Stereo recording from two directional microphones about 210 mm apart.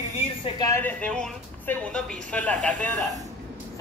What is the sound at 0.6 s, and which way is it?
A woman's voice, 10° left (ahead or behind).